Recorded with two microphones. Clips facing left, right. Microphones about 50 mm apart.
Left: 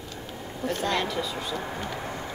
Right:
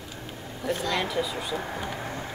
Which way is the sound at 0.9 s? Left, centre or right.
Centre.